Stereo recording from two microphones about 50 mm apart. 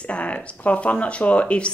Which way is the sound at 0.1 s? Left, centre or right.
Left.